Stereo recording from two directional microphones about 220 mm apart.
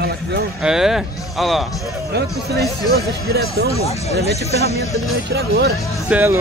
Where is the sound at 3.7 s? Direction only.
30° left (ahead or behind).